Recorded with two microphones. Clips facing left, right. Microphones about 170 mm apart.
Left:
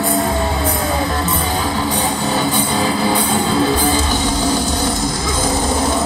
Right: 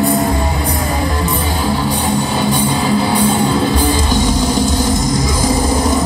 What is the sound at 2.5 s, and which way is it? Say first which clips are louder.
Music: right 3 dB; 10° right (ahead or behind).